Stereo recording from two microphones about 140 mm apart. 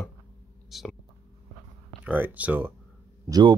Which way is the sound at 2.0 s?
10° right (ahead or behind).